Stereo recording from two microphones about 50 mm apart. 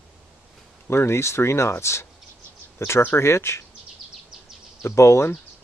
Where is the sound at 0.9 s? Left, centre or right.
Left.